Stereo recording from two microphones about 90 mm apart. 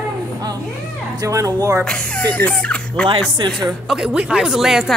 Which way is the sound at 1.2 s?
40° right (ahead or behind).